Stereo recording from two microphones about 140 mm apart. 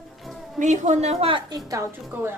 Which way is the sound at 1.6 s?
20° right (ahead or behind).